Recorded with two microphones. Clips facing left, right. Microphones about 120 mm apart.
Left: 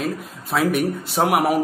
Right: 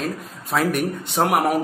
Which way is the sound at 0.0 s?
Centre (ahead or behind).